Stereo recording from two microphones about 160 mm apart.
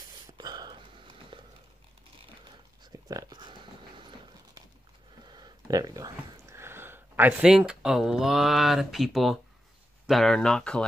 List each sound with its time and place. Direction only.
0.3 s a sound: 25° right (ahead or behind)
2.4 s dog: 25° right (ahead or behind)
5.3 s speech: 25° right (ahead or behind); by 10.9 s 5° left (ahead or behind)